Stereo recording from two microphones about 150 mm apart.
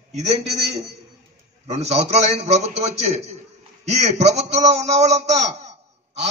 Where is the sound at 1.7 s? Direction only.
45° right (ahead or behind).